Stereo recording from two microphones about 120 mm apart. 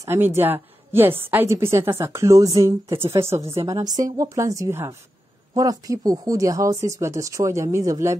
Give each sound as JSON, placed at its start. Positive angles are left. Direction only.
{"t": 0.0, "sound": "a woman's voice", "side_deg": -20}